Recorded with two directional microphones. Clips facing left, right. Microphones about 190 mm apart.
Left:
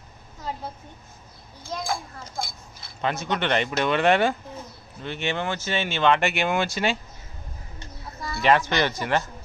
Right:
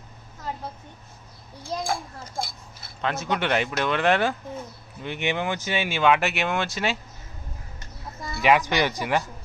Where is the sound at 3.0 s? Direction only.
Centre (ahead or behind).